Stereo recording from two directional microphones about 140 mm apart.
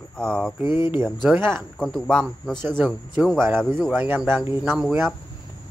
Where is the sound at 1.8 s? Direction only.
5° left (ahead or behind).